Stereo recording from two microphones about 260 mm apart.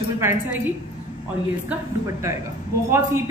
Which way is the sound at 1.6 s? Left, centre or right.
Centre.